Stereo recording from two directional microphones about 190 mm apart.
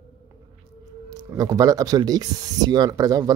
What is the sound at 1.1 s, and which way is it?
Speech, 20° right (ahead or behind).